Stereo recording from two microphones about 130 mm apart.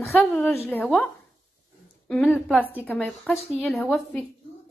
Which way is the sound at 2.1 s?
Centre (ahead or behind).